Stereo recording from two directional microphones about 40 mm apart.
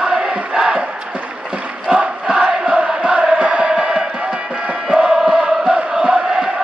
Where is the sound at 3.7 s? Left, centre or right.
Centre.